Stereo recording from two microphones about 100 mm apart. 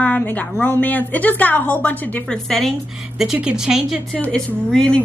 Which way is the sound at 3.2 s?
5° right (ahead or behind).